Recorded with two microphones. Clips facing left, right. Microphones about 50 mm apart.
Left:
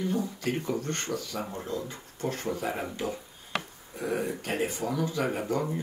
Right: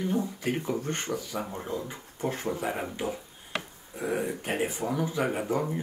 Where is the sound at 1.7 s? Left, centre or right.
Centre.